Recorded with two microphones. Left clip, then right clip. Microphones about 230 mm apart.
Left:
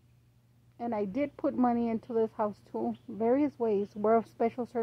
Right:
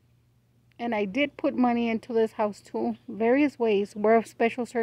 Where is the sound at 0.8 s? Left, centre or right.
Right.